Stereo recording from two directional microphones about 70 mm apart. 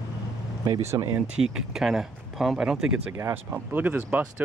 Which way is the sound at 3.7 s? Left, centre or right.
Right.